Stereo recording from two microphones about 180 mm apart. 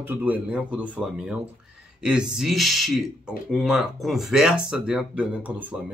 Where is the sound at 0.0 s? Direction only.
10° right (ahead or behind).